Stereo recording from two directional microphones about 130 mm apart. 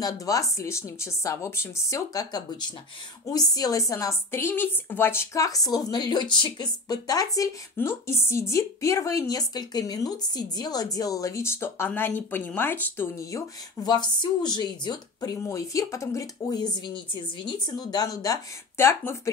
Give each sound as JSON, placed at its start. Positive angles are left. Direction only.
{"t": 0.0, "sound": "a woman's voice", "side_deg": 25}
{"t": 13.8, "sound": "a woman's voice", "side_deg": 35}